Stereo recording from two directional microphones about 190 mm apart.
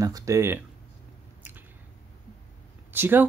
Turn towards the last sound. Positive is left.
turn(degrees=-10)  # may be behind; listen again after turning